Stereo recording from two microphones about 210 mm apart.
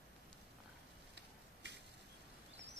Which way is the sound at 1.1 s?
55° right (ahead or behind).